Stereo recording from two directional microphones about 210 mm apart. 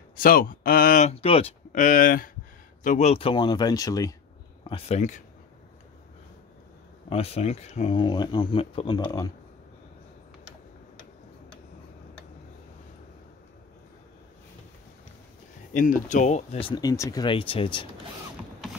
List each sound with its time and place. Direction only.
0.1 s speech: 45° left (ahead or behind); by 4.1 s 15° left (ahead or behind)
4.6 s speech: 30° left (ahead or behind)
7.1 s speech: 30° left (ahead or behind)
15.7 s speech: 40° left (ahead or behind)